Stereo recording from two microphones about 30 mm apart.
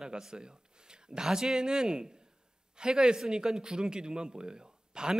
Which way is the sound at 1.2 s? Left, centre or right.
Right.